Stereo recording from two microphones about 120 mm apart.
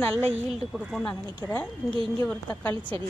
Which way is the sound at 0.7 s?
Centre (ahead or behind).